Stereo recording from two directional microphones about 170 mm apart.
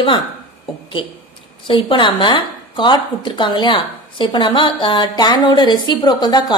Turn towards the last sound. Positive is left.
turn(degrees=25)  # may be behind; listen again after turning